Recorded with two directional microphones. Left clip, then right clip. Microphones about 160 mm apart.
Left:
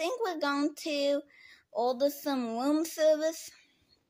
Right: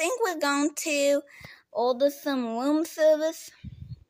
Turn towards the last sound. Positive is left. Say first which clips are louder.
# right 3 dB
turn(degrees=-20)  # may be behind; listen again after turning